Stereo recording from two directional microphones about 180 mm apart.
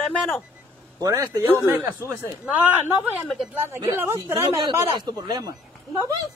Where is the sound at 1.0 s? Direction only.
20° right (ahead or behind).